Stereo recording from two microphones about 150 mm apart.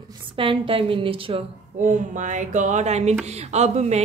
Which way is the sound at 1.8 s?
55° right (ahead or behind).